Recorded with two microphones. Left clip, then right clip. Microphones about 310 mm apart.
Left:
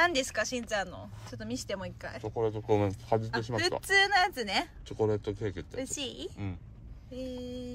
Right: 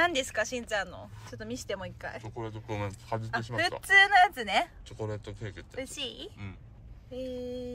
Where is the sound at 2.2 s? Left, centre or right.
Left.